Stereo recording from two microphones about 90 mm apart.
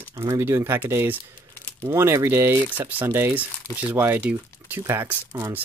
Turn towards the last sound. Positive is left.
turn(degrees=-30)  # may be behind; listen again after turning